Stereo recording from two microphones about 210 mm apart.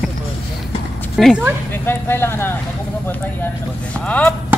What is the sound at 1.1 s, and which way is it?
Speech, centre (ahead or behind).